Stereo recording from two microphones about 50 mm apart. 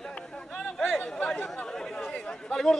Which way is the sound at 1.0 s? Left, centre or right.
Centre.